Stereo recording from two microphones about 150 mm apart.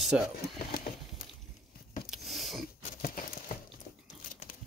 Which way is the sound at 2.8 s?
60° left (ahead or behind).